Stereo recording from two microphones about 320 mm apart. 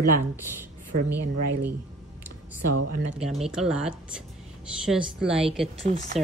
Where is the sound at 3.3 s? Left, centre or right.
Centre.